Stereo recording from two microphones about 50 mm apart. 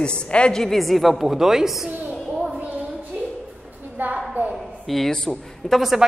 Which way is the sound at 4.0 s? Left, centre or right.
Right.